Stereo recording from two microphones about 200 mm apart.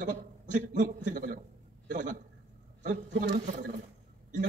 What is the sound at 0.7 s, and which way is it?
Speech, 40° right (ahead or behind).